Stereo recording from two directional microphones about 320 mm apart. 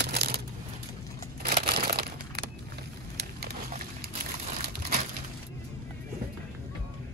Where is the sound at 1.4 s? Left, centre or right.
Right.